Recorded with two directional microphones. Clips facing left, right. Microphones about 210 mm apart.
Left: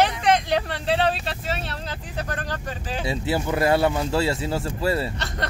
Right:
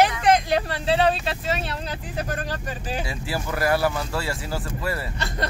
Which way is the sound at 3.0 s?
25° left (ahead or behind).